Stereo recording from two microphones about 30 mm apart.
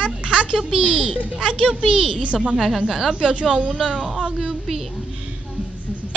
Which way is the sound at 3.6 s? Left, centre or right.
Right.